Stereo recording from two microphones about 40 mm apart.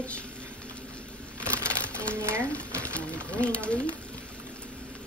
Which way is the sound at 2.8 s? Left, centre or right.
Left.